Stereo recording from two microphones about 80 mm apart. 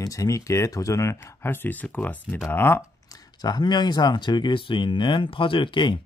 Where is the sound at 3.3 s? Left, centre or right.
Left.